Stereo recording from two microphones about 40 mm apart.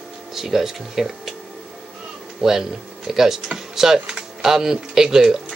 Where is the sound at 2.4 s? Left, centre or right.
Centre.